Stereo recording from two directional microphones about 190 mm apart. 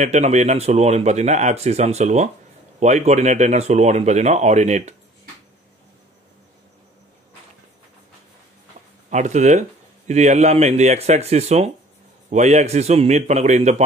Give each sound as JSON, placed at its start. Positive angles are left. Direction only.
{"t": 0.0, "sound": "speech", "side_deg": -35}
{"t": 9.1, "sound": "speech", "side_deg": -40}